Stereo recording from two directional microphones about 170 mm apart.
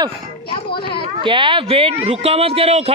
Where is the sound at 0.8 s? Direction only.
30° left (ahead or behind).